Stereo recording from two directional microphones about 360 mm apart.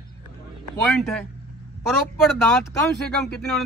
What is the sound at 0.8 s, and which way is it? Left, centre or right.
Speech, centre.